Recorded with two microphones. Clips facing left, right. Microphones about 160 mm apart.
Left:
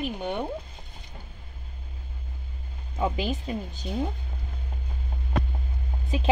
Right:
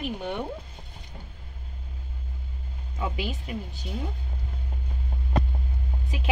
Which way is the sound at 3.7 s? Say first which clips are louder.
Left 5 dB; 20° left (ahead or behind).